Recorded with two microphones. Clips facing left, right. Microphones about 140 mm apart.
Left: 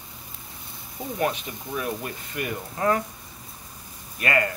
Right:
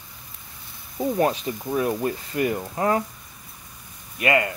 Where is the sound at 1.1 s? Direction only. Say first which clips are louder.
Right 2 dB; 30° right (ahead or behind).